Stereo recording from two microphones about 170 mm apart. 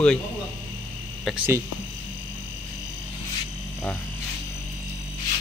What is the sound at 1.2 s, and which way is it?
Speech, 5° right (ahead or behind).